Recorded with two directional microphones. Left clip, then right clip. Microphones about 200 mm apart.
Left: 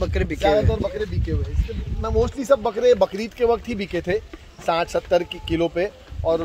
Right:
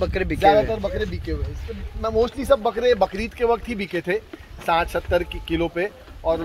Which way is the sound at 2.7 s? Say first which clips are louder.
Left 2 dB; 55° left (ahead or behind).